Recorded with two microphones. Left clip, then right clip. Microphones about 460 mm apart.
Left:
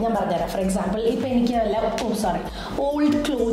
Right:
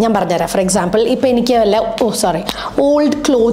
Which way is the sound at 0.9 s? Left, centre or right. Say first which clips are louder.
Right 10 dB; right.